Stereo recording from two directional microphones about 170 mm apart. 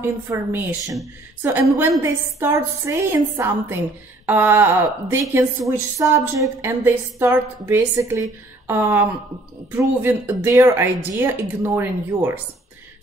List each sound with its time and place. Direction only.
0.0 s a woman's voice: 15° right (ahead or behind)